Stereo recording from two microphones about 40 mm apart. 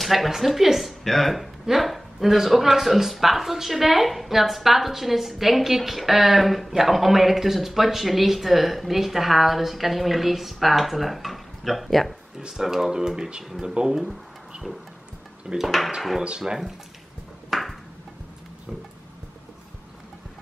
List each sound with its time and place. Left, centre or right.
0.0 s a woman's voice: centre
12.4 s speech: centre
15.5 s a woman's voice: centre
16.3 s speech: centre
17.5 s a sound: centre